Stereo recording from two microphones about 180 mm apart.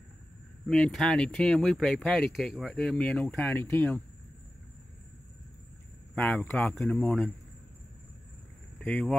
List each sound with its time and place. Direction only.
0.7 s speech: 5° left (ahead or behind)
6.1 s speech: 5° left (ahead or behind)
8.7 s speech: 5° left (ahead or behind)